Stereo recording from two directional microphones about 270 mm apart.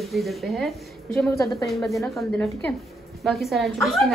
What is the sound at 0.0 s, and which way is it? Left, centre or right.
A woman's voice, centre.